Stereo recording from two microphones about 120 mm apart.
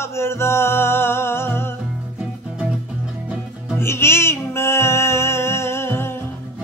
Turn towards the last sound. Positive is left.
turn(degrees=20)  # may be behind; listen again after turning